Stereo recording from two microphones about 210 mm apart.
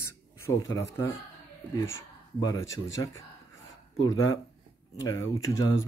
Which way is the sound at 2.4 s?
15° left (ahead or behind).